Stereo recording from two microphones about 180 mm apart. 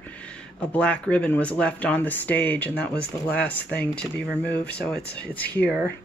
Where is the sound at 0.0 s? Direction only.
5° left (ahead or behind).